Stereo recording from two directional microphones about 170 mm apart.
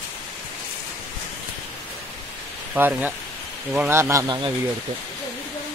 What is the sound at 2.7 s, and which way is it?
A man's voice, 10° right (ahead or behind).